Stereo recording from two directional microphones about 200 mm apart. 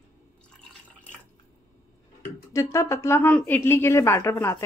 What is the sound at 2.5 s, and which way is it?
A woman's voice, 15° left (ahead or behind).